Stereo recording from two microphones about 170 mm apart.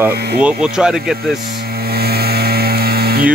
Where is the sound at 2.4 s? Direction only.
65° right (ahead or behind).